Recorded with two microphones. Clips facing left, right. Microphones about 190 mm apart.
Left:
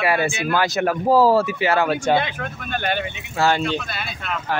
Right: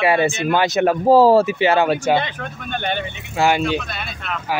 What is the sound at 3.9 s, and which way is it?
Speech, centre (ahead or behind).